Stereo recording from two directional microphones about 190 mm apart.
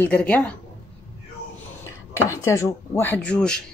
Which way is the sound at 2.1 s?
15° left (ahead or behind).